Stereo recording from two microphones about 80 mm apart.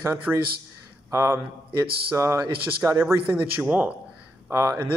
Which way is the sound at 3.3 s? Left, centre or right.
Centre.